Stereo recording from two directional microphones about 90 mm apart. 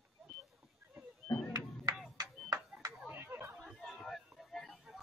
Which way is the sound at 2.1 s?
40° right (ahead or behind).